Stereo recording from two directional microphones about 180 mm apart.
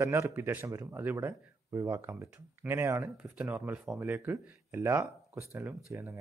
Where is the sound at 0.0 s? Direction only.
15° right (ahead or behind).